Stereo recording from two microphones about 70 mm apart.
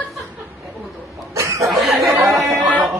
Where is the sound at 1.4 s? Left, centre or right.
Right.